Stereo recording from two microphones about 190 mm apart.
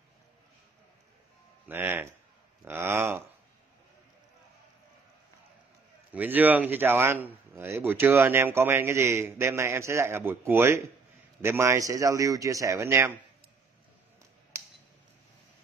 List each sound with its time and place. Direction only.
1.7 s a man's voice: 10° right (ahead or behind)
6.1 s a man's voice: 10° right (ahead or behind)